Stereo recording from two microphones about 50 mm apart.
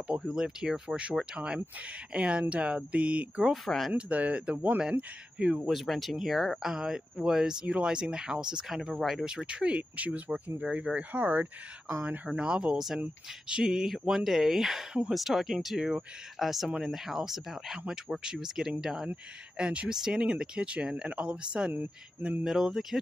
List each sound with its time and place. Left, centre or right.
0.3 s speech: centre
3.6 s speech: centre
3.9 s speech: right
5.6 s speech: centre
9.5 s speech: right
11.1 s speech: right
12.3 s speech: centre
12.7 s speech: centre
19.5 s speech: right
22.4 s speech: centre